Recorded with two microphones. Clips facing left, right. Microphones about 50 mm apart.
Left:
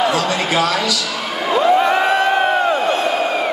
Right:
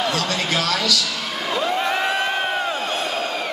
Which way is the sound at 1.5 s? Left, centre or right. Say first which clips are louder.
Left 8 dB; centre.